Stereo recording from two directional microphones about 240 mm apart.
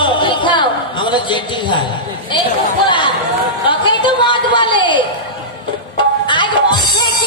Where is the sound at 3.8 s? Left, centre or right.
Centre.